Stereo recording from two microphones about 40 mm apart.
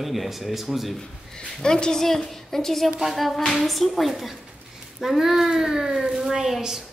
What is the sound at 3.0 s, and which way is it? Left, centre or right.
A child's voice, centre.